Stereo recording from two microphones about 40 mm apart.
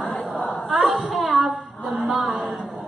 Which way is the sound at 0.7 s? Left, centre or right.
Centre.